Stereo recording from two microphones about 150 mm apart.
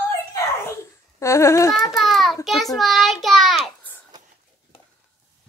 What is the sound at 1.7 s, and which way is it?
Child singing, centre (ahead or behind).